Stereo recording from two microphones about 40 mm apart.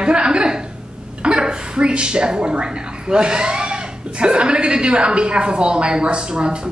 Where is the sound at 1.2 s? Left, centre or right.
Right.